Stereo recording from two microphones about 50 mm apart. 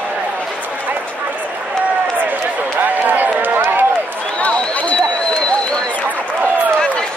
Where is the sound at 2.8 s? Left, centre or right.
Right.